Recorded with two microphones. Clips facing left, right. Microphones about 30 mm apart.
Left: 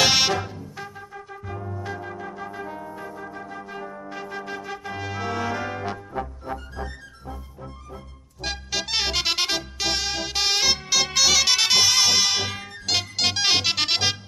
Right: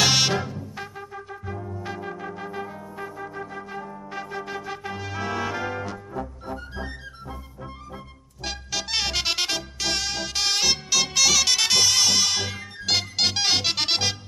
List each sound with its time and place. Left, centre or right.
0.0 s music: centre
0.7 s music: centre
3.7 s music: centre
4.1 s music: centre
4.9 s brass instrument: centre
6.2 s music: left
8.4 s music: centre
12.9 s music: centre
13.2 s music: centre